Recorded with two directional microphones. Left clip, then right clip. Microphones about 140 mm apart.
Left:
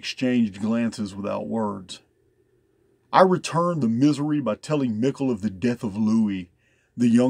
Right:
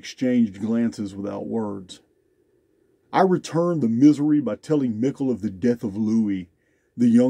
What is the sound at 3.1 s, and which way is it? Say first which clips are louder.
Speech: left 2 dB; 35° left (ahead or behind).